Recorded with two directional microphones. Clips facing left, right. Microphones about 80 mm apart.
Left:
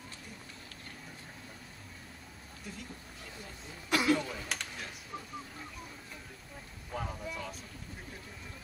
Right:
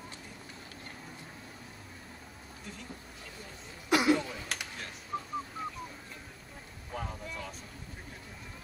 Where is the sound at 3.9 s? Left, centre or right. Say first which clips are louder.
Right 3 dB; centre.